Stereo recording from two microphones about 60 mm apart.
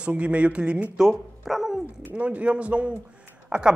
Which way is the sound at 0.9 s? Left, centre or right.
Centre.